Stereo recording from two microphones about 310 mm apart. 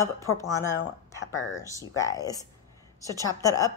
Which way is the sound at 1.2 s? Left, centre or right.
Left.